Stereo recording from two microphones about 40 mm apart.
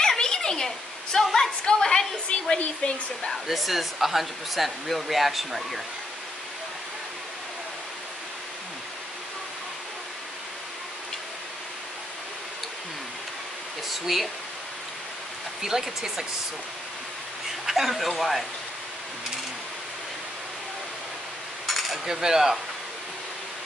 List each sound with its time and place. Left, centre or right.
0.0 s a sound: centre
1.2 s speech: centre
1.6 s a sound: left
3.4 s speech: centre
14.0 s speech: centre
15.6 s speech: centre
17.6 s speech: centre
21.6 s cutlery: centre